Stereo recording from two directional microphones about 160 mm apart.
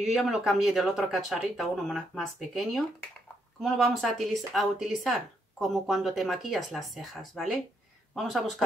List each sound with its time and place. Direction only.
0.0 s speech: centre (ahead or behind)